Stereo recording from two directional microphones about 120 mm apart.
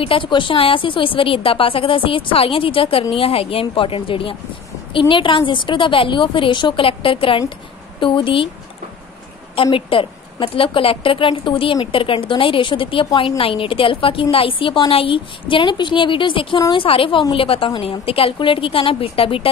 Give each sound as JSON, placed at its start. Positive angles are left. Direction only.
{"t": 0.0, "sound": "a woman's voice", "side_deg": 45}
{"t": 9.6, "sound": "a woman's voice", "side_deg": 50}